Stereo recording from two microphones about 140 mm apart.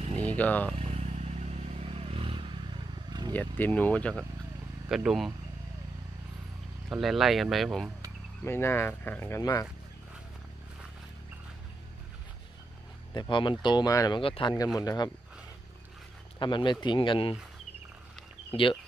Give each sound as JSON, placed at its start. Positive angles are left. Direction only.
{"t": 0.2, "sound": "speech", "side_deg": 10}
{"t": 0.7, "sound": "vehicle", "side_deg": -45}
{"t": 3.1, "sound": "vehicle", "side_deg": -30}
{"t": 3.3, "sound": "speech", "side_deg": 10}
{"t": 4.8, "sound": "speech", "side_deg": -5}
{"t": 6.9, "sound": "speech", "side_deg": 0}
{"t": 8.5, "sound": "speech", "side_deg": 15}
{"t": 13.1, "sound": "speech", "side_deg": 35}
{"t": 14.2, "sound": "speech", "side_deg": 35}
{"t": 16.3, "sound": "speech", "side_deg": 35}
{"t": 18.5, "sound": "speech", "side_deg": 40}